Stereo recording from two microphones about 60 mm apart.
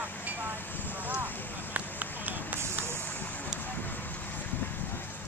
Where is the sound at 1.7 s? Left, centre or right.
Right.